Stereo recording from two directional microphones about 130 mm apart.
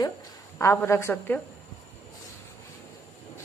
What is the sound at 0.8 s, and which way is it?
Speech, 20° left (ahead or behind).